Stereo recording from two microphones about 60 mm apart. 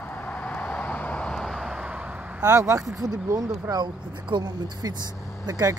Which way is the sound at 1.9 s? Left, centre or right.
Right.